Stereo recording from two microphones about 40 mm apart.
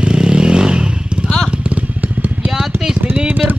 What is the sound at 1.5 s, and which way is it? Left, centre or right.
Vehicle, right.